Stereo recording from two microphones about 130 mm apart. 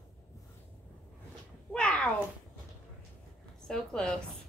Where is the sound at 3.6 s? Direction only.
5° left (ahead or behind).